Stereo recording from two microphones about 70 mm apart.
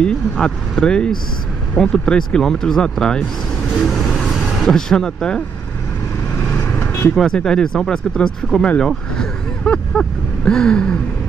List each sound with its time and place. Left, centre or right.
0.0 s speech: centre
3.8 s vehicle: centre
4.6 s speech: centre
6.4 s vehicle: left
7.2 s speech: centre